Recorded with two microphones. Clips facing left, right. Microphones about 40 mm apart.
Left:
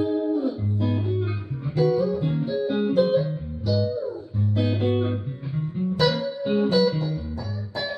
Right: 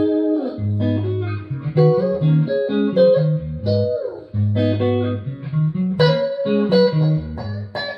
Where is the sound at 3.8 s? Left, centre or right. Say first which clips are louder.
Right 5 dB; centre.